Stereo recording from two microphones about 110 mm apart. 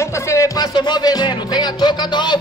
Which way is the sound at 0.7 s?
40° left (ahead or behind).